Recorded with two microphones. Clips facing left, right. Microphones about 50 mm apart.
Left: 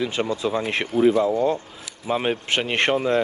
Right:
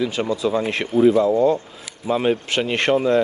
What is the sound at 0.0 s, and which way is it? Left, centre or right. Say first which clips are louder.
Speech: right 2 dB; left.